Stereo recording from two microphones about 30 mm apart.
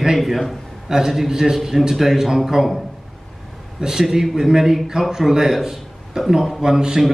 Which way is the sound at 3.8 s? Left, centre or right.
Centre.